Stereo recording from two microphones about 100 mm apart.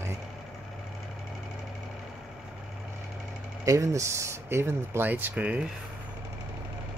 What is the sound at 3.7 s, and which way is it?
Speech, 30° right (ahead or behind).